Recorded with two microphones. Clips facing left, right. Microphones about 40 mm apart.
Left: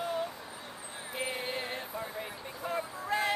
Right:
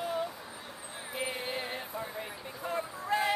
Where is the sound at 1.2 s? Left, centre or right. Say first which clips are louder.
Even; centre.